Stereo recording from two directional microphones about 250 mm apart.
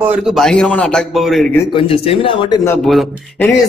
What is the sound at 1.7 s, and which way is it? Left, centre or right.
Speech, left.